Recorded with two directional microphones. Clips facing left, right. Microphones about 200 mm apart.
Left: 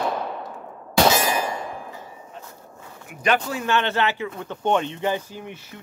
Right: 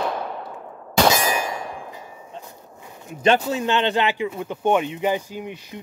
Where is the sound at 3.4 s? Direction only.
20° right (ahead or behind).